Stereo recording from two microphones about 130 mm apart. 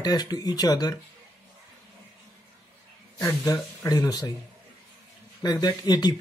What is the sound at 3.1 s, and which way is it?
Speech, 25° left (ahead or behind).